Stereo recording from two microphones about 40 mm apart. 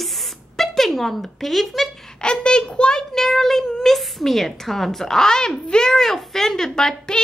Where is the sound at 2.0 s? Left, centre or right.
Left.